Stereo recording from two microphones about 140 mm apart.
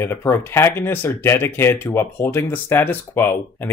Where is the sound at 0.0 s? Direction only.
15° left (ahead or behind).